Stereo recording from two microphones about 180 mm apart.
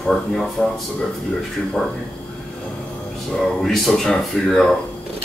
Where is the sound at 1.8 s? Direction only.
Centre (ahead or behind).